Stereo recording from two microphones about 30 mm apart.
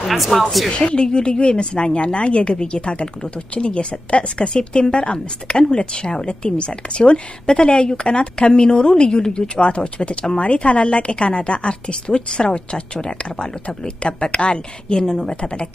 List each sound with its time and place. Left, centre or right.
0.1 s speech: centre
0.7 s a woman's voice: left
1.0 s a woman's voice: left
5.0 s a woman's voice: left